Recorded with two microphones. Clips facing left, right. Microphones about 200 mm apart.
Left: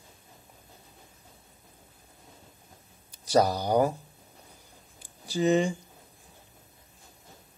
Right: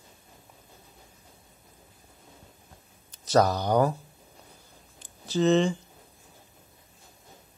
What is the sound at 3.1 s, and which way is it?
Speech, 10° left (ahead or behind).